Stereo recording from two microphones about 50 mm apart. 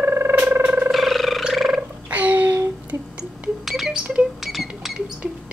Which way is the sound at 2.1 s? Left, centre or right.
Right.